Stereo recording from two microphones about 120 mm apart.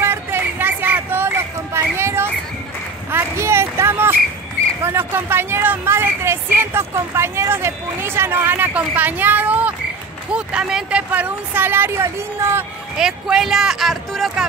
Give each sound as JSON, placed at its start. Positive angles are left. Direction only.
{"t": 0.0, "sound": "a sound", "side_deg": -20}
{"t": 4.8, "sound": "speech", "side_deg": -20}
{"t": 12.9, "sound": "speech", "side_deg": -5}